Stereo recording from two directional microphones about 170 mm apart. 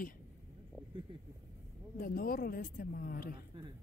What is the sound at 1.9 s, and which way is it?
A woman's voice, 55° left (ahead or behind).